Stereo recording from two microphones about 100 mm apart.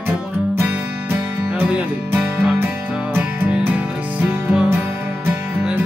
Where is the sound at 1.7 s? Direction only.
15° right (ahead or behind).